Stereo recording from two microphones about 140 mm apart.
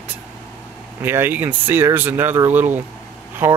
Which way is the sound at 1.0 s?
15° right (ahead or behind).